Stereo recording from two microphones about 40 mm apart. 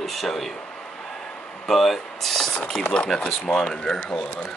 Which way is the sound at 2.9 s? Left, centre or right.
Left.